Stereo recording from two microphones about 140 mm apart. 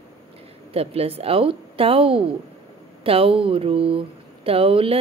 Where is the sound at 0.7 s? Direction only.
45° right (ahead or behind).